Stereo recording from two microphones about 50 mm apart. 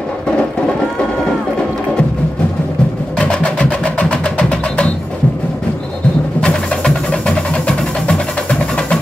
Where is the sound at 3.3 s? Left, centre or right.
Left.